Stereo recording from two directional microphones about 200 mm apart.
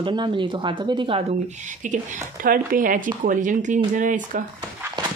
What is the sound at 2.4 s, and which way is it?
Speech, 45° right (ahead or behind).